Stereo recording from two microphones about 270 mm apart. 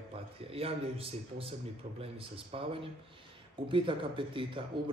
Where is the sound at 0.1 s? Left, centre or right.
Right.